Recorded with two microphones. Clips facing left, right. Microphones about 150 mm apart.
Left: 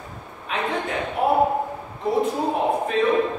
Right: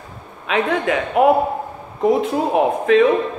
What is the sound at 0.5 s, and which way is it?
A man's voice, 90° right.